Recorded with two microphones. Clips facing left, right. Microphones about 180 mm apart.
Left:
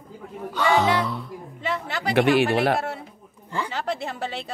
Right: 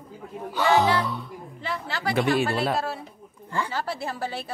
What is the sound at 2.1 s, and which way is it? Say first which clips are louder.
Speech: left 5 dB; 70° left (ahead or behind).